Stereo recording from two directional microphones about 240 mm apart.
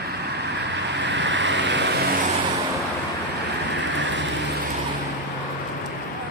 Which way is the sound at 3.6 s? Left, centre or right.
Right.